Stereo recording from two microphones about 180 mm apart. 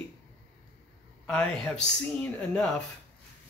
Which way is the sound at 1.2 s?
5° left (ahead or behind).